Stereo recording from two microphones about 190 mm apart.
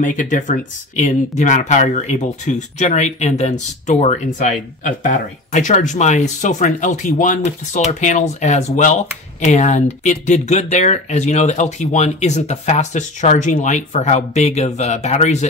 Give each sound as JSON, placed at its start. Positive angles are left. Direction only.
{"t": 0.0, "sound": "speech", "side_deg": 40}